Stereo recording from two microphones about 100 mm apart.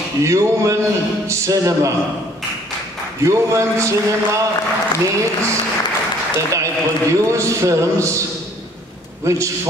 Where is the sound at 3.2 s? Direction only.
30° right (ahead or behind).